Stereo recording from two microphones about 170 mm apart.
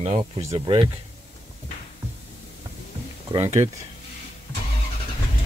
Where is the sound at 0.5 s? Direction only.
30° right (ahead or behind).